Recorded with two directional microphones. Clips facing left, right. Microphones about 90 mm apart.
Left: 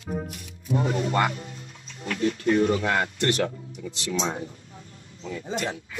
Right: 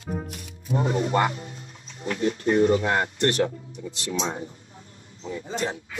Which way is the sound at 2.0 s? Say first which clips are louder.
Even; 20° right (ahead or behind).